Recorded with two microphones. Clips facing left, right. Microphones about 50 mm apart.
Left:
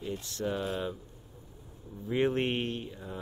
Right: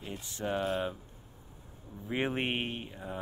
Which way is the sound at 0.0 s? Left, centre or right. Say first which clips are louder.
Left 3 dB; centre.